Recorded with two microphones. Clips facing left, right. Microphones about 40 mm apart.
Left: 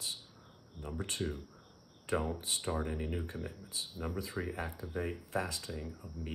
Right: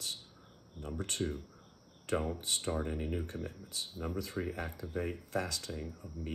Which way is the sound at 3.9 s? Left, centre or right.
Left.